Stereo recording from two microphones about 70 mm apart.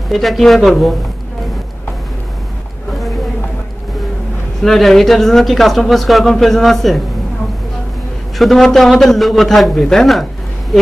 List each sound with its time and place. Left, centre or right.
0.1 s speech: centre
4.6 s speech: centre
8.4 s speech: centre